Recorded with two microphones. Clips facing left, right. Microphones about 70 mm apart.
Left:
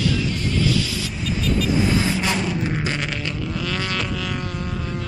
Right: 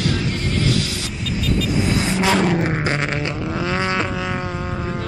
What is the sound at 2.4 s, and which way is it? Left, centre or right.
Didgeridoo, right.